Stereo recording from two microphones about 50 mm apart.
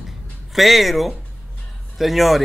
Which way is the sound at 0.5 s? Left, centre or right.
Centre.